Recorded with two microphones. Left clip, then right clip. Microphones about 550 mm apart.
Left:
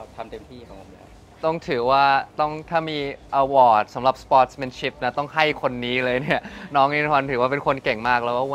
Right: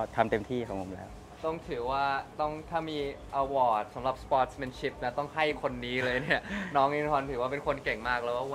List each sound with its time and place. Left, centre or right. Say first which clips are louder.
0.2 s speech: right 7 dB; right
1.4 s speech: left 11 dB; left